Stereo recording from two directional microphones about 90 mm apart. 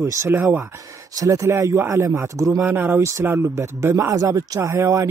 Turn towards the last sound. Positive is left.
turn(degrees=-35)  # may be behind; listen again after turning